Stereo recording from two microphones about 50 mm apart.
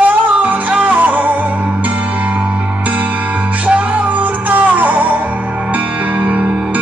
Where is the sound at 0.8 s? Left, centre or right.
Right.